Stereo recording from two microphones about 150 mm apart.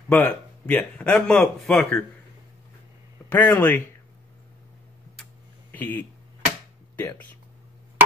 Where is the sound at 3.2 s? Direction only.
10° left (ahead or behind).